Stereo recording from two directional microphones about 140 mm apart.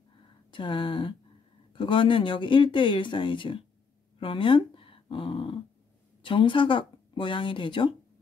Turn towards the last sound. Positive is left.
turn(degrees=35)  # may be behind; listen again after turning